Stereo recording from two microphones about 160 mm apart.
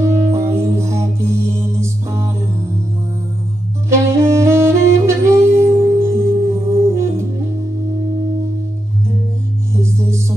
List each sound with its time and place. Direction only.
0.3 s music: 15° right (ahead or behind)
3.9 s saxophone: 15° right (ahead or behind)
9.8 s music: 15° right (ahead or behind)